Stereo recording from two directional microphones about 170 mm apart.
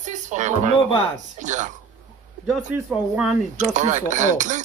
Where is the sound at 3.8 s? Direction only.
45° right (ahead or behind).